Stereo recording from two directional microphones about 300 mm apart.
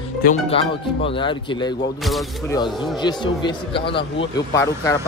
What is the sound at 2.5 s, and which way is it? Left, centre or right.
Speech, centre.